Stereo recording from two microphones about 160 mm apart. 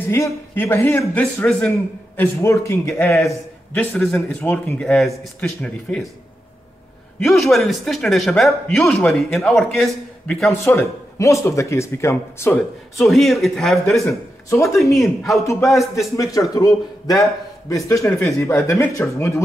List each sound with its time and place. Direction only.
0.1 s a man's voice: 15° left (ahead or behind)
3.7 s a man's voice: 5° left (ahead or behind)
7.2 s a man's voice: centre (ahead or behind)
10.5 s a man's voice: 15° left (ahead or behind)
13.0 s speech: centre (ahead or behind)
14.5 s speech: 20° left (ahead or behind)
15.0 s speech: centre (ahead or behind)
16.2 s a man's voice: 20° left (ahead or behind)